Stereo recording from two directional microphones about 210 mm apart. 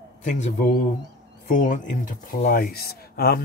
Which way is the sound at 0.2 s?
35° left (ahead or behind).